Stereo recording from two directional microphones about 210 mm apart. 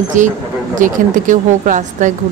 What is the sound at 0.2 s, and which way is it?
Speech, 35° right (ahead or behind).